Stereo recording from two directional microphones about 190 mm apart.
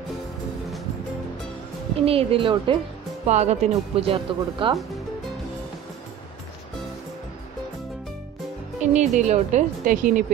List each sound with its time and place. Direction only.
2.0 s speech: 30° right (ahead or behind)
8.9 s speech: 35° right (ahead or behind)